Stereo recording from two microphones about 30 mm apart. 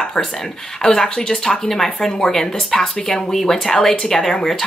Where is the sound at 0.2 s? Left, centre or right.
Centre.